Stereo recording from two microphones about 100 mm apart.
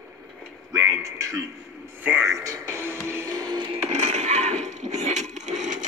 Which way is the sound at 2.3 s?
35° right (ahead or behind).